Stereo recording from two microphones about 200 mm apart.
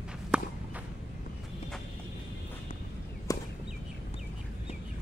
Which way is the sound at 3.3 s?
15° left (ahead or behind).